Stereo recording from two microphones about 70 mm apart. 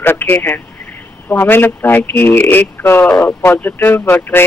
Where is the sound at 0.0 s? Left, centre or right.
Left.